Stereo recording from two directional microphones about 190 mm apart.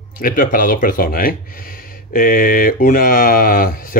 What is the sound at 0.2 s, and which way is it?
Speech, 45° left (ahead or behind).